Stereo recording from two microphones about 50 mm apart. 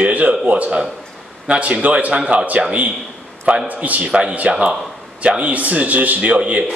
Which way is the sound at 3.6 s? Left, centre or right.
Right.